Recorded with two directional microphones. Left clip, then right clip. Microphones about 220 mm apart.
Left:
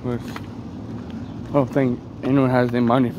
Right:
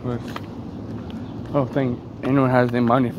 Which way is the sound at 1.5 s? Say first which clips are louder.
Left 2 dB; 15° left (ahead or behind).